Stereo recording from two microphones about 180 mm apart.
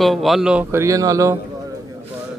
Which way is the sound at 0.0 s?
Centre (ahead or behind).